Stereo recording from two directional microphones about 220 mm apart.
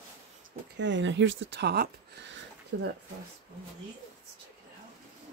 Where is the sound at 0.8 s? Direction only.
55° right (ahead or behind).